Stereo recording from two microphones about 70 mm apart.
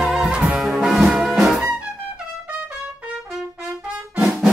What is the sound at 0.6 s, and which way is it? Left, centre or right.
Brass instrument, centre.